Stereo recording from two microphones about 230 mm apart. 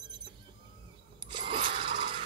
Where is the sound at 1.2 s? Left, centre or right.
Right.